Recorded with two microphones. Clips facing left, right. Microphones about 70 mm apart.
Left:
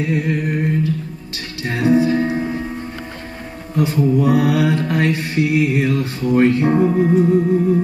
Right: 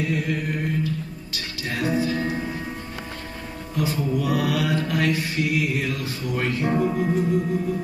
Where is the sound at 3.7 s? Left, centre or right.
Left.